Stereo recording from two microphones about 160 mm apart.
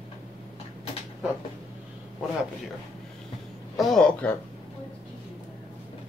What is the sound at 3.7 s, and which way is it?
Speech, centre (ahead or behind).